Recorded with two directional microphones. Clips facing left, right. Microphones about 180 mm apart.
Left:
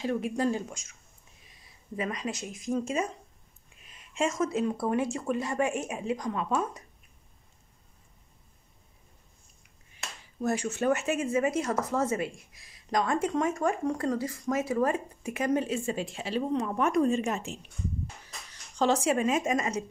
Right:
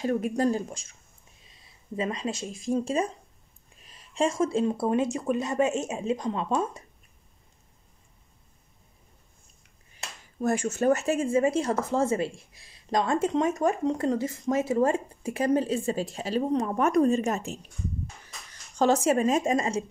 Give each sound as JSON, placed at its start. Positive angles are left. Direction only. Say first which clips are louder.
{"t": 0.0, "sound": "speech", "louder": "right 3 dB", "side_deg": -45}
{"t": 10.4, "sound": "speech", "louder": "right 3 dB", "side_deg": -50}
{"t": 18.8, "sound": "speech", "louder": "right 3 dB", "side_deg": -45}